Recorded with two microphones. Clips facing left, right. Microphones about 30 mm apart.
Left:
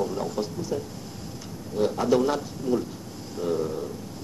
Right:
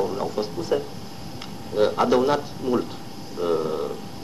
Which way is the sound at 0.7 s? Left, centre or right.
Right.